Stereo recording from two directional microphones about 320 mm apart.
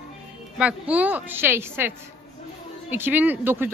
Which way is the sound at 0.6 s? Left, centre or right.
Centre.